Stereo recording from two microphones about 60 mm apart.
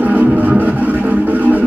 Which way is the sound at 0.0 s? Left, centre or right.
Right.